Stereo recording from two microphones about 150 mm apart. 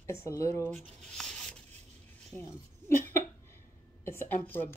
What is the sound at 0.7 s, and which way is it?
Speech, 5° left (ahead or behind).